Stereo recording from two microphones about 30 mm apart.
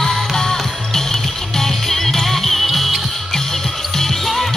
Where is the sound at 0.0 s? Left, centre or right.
Centre.